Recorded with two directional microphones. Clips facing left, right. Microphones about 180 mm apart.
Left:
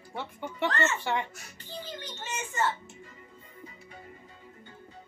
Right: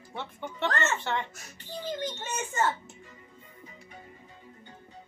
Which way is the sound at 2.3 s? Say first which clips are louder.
Right 1 dB; 40° right (ahead or behind).